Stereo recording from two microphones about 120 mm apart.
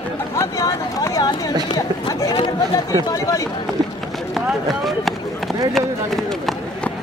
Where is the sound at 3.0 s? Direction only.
30° left (ahead or behind).